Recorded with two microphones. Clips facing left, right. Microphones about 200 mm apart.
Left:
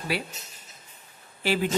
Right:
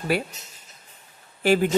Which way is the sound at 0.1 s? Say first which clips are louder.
Right 5 dB; 50° right (ahead or behind).